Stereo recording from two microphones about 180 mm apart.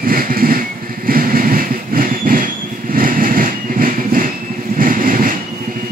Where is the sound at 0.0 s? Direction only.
55° right (ahead or behind).